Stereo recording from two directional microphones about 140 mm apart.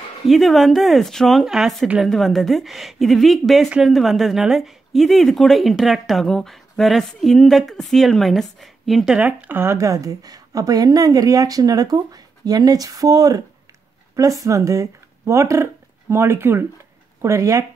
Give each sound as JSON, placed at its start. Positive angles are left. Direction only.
{"t": 0.3, "sound": "speech", "side_deg": 0}